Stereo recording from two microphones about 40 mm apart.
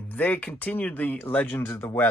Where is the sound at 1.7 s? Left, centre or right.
Left.